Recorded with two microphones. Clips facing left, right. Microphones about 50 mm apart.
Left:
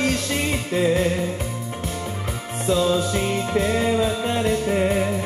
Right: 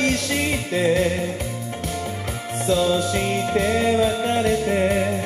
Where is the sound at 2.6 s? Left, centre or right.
Centre.